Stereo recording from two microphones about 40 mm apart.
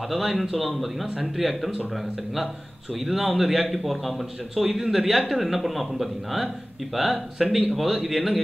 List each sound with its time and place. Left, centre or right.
0.1 s speech: centre